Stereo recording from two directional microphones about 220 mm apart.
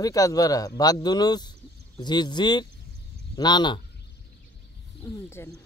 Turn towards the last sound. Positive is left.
turn(degrees=10)  # may be behind; listen again after turning